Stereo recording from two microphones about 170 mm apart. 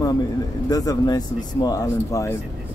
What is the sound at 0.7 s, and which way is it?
Speech, 20° left (ahead or behind).